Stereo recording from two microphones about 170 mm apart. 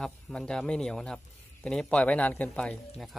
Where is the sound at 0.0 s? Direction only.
5° left (ahead or behind).